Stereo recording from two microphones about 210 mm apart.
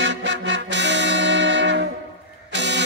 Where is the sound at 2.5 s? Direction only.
55° right (ahead or behind).